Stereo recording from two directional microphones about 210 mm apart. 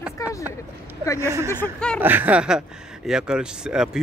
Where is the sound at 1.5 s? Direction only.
5° left (ahead or behind).